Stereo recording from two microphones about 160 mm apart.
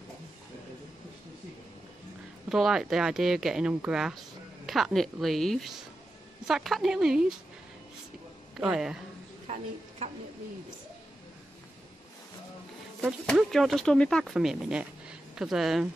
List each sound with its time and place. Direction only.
2.5 s speech: centre (ahead or behind)
8.5 s speech: 5° right (ahead or behind)
9.5 s a woman's voice: 45° right (ahead or behind)
13.3 s speech: centre (ahead or behind)